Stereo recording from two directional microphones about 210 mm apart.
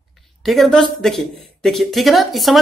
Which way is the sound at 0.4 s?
Centre (ahead or behind).